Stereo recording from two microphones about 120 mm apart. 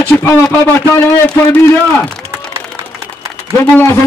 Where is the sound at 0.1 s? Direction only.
20° left (ahead or behind).